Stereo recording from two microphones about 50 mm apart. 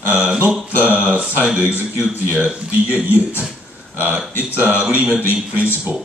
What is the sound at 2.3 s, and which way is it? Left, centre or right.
Speech, right.